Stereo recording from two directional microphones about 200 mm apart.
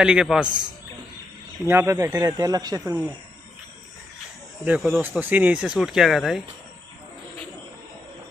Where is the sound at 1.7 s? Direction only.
15° right (ahead or behind).